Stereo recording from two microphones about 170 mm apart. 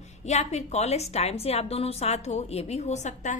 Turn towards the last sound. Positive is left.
turn(degrees=45)  # may be behind; listen again after turning